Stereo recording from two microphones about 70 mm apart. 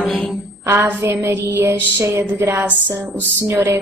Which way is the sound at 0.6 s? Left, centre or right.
Right.